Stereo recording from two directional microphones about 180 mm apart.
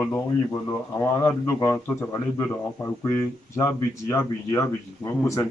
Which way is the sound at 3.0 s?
15° left (ahead or behind).